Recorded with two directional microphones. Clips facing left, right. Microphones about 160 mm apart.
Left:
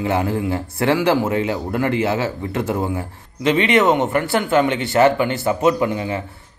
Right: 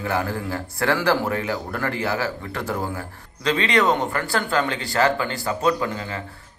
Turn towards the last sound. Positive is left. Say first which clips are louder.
# left 6 dB
turn(degrees=20)  # may be behind; listen again after turning